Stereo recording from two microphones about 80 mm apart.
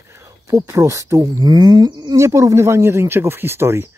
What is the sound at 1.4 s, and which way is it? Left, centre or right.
Speech, right.